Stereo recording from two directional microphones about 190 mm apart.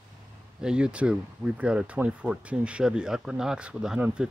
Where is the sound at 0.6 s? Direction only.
5° right (ahead or behind).